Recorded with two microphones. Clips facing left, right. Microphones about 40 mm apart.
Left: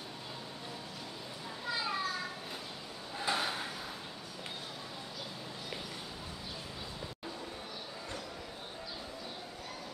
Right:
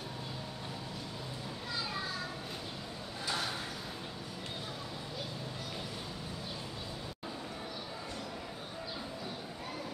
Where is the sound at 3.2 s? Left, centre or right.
Centre.